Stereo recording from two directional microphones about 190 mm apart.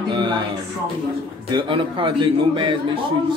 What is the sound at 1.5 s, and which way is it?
A man's voice, 25° right (ahead or behind).